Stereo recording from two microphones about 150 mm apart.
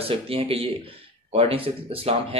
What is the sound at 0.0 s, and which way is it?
Speech, 40° right (ahead or behind).